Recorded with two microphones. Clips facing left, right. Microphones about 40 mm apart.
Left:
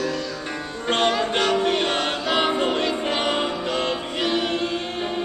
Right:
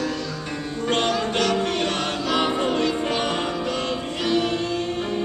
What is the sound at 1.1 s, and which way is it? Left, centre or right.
Music, left.